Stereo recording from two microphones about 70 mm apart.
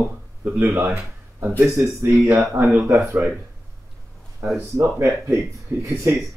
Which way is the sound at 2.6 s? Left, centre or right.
Right.